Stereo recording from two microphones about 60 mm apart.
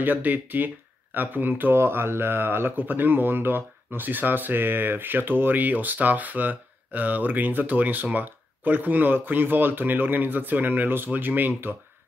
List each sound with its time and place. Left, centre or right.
0.0 s speech: right